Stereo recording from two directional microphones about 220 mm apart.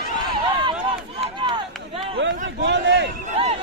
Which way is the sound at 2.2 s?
55° right (ahead or behind).